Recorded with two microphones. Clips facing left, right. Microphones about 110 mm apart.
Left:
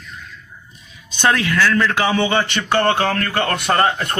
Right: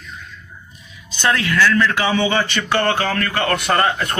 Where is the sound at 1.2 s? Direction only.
20° left (ahead or behind).